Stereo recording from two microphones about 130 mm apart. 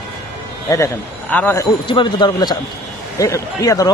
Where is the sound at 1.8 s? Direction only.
35° left (ahead or behind).